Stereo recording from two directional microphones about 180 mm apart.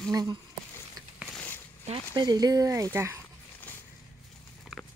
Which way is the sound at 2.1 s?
20° right (ahead or behind).